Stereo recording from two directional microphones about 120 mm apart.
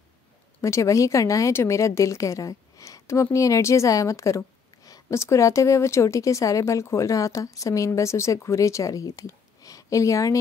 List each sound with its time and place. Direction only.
0.6 s a woman's voice: 25° left (ahead or behind)